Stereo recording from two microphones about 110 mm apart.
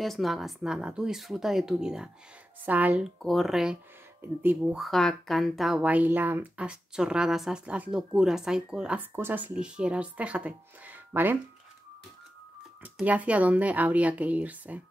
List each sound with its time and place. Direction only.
0.0 s speech: centre (ahead or behind)
3.2 s speech: centre (ahead or behind)
4.2 s speech: 15° right (ahead or behind)
4.7 s speech: centre (ahead or behind)
5.9 s speech: 15° right (ahead or behind)
13.0 s speech: 15° right (ahead or behind)